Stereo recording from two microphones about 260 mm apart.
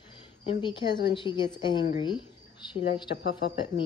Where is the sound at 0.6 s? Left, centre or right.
Centre.